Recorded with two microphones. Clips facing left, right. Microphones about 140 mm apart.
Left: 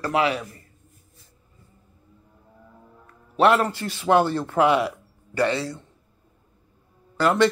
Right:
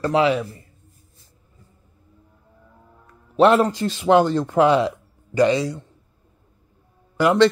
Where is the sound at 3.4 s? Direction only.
15° right (ahead or behind).